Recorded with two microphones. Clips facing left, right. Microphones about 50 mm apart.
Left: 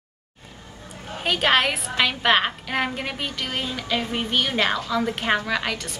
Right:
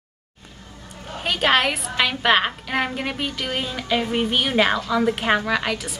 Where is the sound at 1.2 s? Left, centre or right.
Centre.